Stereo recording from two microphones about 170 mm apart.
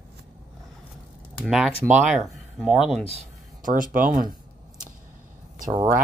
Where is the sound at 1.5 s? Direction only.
5° right (ahead or behind).